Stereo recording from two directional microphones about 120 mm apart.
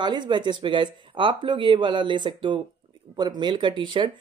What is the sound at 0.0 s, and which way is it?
Speech, 40° right (ahead or behind).